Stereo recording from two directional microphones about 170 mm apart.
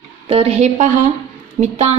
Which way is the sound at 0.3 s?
35° right (ahead or behind).